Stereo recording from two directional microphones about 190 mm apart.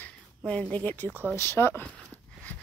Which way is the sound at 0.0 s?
5° left (ahead or behind).